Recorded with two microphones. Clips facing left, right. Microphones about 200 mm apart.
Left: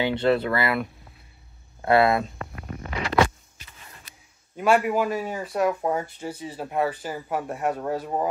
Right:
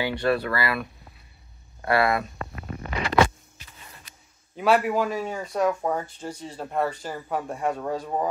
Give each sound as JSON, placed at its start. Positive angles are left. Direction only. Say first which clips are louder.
{"t": 0.0, "sound": "speech", "louder": "left 3 dB", "side_deg": 20}
{"t": 1.9, "sound": "speech", "louder": "left 3 dB", "side_deg": 20}
{"t": 4.6, "sound": "speech", "louder": "left 1 dB", "side_deg": 0}